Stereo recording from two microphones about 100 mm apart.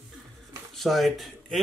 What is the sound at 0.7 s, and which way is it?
Speech, centre (ahead or behind).